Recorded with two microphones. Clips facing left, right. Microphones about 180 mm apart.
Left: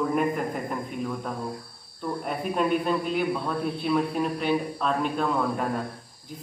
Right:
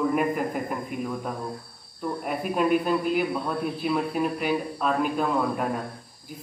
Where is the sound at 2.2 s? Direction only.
5° right (ahead or behind).